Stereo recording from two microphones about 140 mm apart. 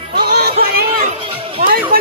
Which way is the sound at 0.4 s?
90° right.